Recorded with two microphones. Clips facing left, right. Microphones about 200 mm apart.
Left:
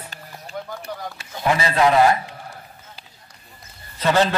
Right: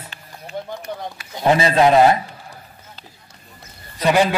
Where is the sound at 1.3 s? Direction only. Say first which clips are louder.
Right 4 dB; 25° right (ahead or behind).